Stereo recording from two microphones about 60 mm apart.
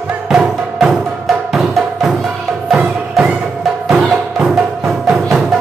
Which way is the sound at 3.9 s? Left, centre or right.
Centre.